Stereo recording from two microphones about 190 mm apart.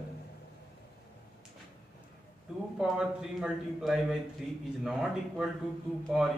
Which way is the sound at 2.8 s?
5° right (ahead or behind).